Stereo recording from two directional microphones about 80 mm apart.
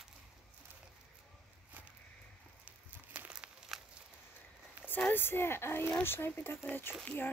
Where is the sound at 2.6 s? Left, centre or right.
Centre.